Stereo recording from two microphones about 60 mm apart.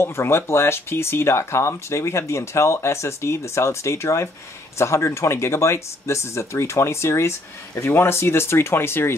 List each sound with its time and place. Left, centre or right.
0.0 s speech: left